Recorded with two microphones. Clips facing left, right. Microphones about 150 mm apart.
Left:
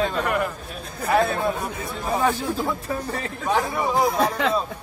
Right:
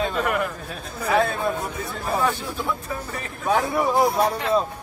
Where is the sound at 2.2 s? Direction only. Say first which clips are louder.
Left 4 dB; 35° left (ahead or behind).